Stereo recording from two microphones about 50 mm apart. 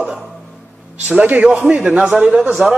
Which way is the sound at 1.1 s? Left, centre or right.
Right.